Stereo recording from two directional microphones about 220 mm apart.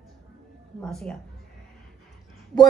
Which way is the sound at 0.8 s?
5° left (ahead or behind).